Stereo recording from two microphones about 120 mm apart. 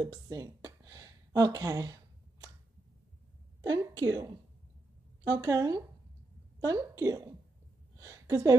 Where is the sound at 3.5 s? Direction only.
35° right (ahead or behind).